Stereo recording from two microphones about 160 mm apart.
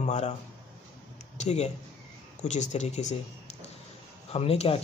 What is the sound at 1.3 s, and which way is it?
Speech, 45° left (ahead or behind).